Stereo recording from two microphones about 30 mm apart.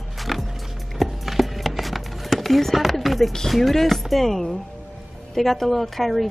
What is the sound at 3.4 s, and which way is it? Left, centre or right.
Speech, centre.